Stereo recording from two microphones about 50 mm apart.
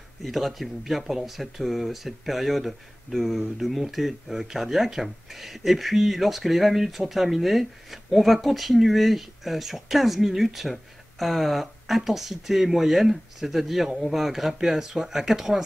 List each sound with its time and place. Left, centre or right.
0.2 s speech: centre